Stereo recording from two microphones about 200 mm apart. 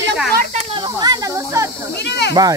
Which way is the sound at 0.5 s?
25° right (ahead or behind).